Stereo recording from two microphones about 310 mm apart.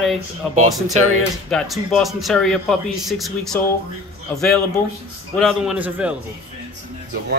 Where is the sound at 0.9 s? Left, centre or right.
Right.